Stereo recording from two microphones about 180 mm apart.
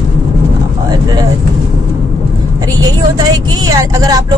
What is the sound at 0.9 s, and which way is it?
Speech, 20° right (ahead or behind).